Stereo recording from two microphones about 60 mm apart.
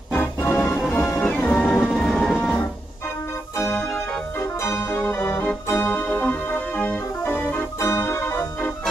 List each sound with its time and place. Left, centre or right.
0.4 s organ: left
0.9 s music: left
1.6 s music: centre
3.5 s organ: left
5.7 s music: left
7.2 s organ: left
7.8 s organ: left